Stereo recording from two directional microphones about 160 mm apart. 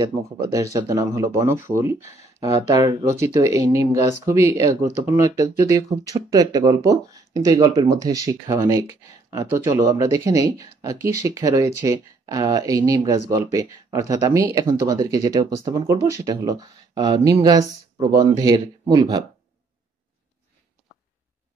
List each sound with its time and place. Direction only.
0.0 s speech: 20° right (ahead or behind)
2.7 s speech: 25° right (ahead or behind)